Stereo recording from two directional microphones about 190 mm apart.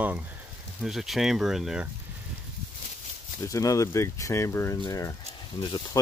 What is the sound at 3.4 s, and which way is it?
Speech, 15° left (ahead or behind).